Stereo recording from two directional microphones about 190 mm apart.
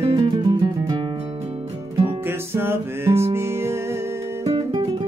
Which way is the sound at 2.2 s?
15° right (ahead or behind).